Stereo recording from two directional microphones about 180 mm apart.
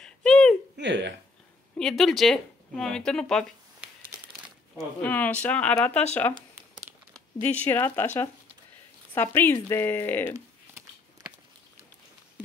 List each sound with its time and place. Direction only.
0.0 s a sound: 5° left (ahead or behind)
0.7 s speech: 80° right
1.8 s speech: 5° left (ahead or behind)
7.4 s speech: 10° left (ahead or behind)